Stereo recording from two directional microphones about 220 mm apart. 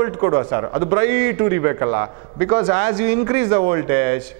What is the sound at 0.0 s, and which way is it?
A man's voice, 15° right (ahead or behind).